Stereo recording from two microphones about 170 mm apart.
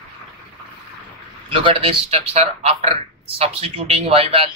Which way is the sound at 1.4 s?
30° right (ahead or behind).